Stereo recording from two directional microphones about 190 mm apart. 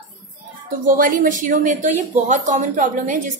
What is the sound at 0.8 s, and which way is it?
A woman's voice, 45° right (ahead or behind).